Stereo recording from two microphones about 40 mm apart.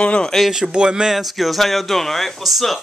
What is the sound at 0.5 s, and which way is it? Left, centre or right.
Speech, centre.